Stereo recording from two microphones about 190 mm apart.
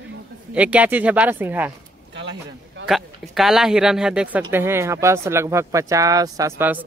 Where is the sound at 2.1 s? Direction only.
70° right (ahead or behind).